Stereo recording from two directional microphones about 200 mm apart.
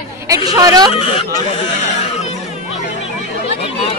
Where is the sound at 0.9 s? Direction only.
30° left (ahead or behind).